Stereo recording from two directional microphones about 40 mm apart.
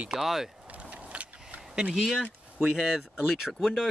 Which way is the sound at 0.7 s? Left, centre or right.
Right.